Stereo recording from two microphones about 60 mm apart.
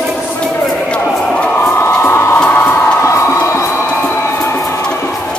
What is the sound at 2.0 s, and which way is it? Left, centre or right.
Crowd, left.